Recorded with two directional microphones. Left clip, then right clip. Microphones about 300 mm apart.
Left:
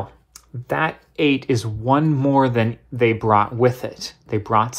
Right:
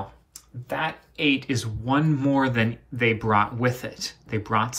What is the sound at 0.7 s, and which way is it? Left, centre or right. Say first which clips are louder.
Speech: left 6 dB; left.